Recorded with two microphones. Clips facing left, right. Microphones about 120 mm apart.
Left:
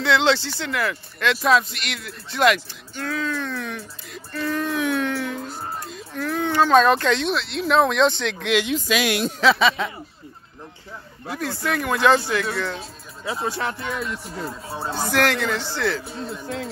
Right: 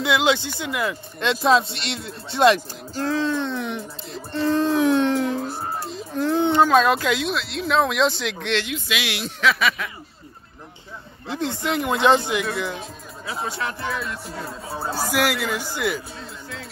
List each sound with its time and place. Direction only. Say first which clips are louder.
0.0 s speech: left 1 dB; 15° right (ahead or behind)
6.7 s speech: left 2 dB; 5° right (ahead or behind)
8.7 s speech: left 6 dB; 40° left (ahead or behind)
9.4 s speech: left 2 dB; 30° left (ahead or behind)
11.2 s speech: right 1 dB; 25° right (ahead or behind)
13.3 s speech: left 2 dB; 30° left (ahead or behind)
14.7 s speech: right 1 dB; 10° right (ahead or behind)